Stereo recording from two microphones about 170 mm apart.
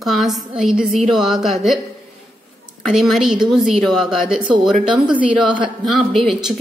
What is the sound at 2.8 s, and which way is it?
Speech, centre (ahead or behind).